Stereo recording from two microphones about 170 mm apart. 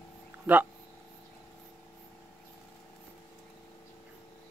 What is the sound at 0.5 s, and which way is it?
Speech, 10° right (ahead or behind).